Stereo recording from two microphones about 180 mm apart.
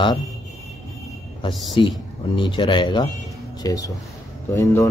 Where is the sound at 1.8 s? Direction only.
25° left (ahead or behind).